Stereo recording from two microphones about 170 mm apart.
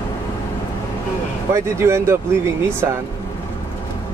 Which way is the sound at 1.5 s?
15° right (ahead or behind).